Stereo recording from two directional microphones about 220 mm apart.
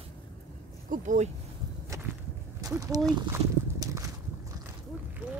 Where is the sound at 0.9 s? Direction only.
35° right (ahead or behind).